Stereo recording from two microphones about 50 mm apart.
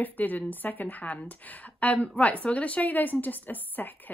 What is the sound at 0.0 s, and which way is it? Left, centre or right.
A woman's voice, left.